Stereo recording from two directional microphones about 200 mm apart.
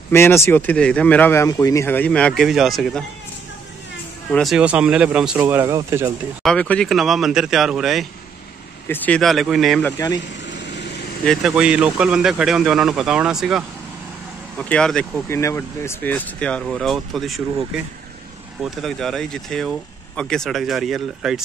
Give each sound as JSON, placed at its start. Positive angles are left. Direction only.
{"t": 0.1, "sound": "speech", "side_deg": 10}
{"t": 4.3, "sound": "speech", "side_deg": 0}
{"t": 6.4, "sound": "speech", "side_deg": 5}
{"t": 10.2, "sound": "vehicle", "side_deg": 60}
{"t": 11.2, "sound": "speech", "side_deg": -5}
{"t": 18.6, "sound": "speech", "side_deg": 0}